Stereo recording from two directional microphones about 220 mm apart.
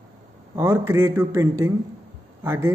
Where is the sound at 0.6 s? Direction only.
10° right (ahead or behind).